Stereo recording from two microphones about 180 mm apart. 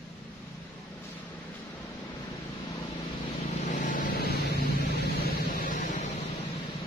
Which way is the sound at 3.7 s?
45° left (ahead or behind).